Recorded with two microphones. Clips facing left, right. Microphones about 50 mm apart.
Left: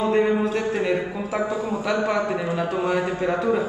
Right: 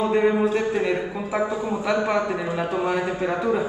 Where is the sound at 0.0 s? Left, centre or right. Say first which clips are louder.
Even; centre.